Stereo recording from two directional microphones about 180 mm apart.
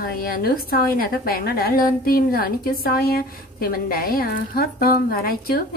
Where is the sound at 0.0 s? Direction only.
55° left (ahead or behind).